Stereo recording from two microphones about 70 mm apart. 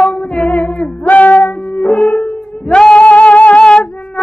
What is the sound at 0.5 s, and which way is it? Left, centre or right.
Female singing, left.